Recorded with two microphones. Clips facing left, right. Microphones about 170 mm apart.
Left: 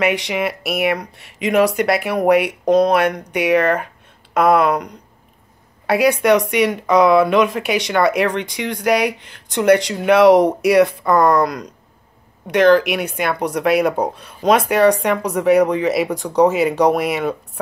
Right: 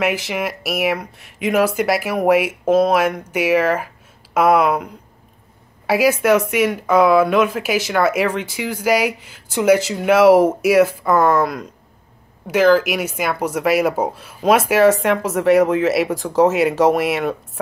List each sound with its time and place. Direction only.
0.0 s speech: centre (ahead or behind)